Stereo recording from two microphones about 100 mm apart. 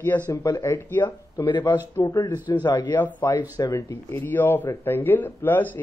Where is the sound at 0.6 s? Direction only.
20° left (ahead or behind).